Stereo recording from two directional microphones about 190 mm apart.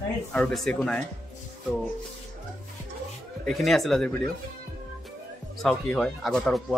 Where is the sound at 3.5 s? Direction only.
Centre (ahead or behind).